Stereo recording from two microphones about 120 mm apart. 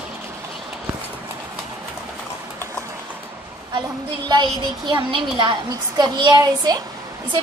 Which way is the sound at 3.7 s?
40° right (ahead or behind).